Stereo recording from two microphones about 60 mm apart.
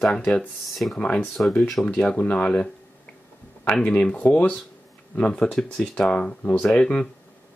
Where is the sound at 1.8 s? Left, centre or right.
Centre.